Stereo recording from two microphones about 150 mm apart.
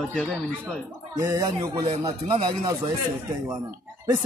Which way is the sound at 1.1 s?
25° right (ahead or behind).